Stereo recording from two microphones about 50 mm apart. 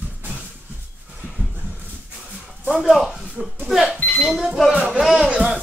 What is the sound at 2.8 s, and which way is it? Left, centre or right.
Speech, centre.